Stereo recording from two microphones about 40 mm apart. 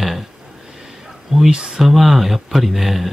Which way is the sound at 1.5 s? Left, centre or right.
Right.